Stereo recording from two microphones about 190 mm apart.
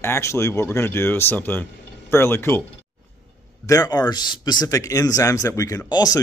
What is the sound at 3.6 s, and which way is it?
Speech, 20° left (ahead or behind).